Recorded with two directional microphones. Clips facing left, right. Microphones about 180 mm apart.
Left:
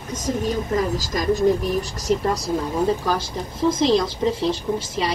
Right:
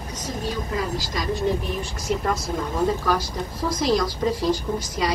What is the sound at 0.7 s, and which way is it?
Speech, 45° left (ahead or behind).